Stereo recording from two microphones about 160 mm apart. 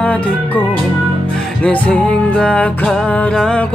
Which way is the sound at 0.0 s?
10° left (ahead or behind).